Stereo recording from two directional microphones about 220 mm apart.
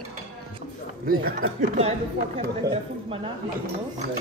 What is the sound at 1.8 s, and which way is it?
Speech, 30° right (ahead or behind).